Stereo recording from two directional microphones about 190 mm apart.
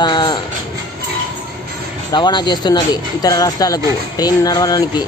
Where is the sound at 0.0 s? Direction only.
25° left (ahead or behind).